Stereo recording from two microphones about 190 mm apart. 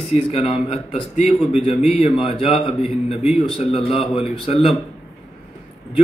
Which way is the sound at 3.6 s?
30° left (ahead or behind).